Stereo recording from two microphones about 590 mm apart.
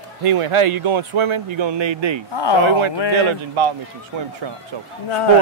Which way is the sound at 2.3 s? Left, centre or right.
Left.